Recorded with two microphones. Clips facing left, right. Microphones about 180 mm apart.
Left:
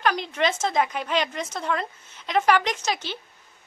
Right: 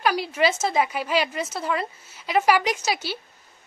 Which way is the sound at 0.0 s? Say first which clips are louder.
Right 2 dB; 10° right (ahead or behind).